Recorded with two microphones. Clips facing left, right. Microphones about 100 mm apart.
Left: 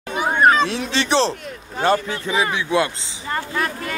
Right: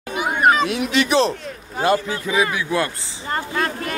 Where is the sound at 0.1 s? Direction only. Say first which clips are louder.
Left 1 dB; 35° left (ahead or behind).